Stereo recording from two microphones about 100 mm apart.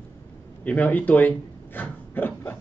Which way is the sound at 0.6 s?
15° left (ahead or behind).